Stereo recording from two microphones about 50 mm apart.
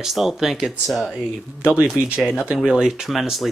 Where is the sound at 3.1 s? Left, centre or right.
Centre.